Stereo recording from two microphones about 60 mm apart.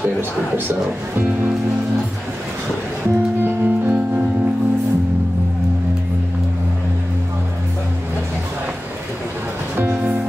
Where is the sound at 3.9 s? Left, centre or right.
Right.